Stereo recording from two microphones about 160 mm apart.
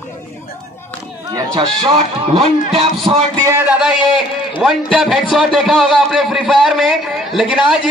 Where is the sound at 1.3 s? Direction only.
20° right (ahead or behind).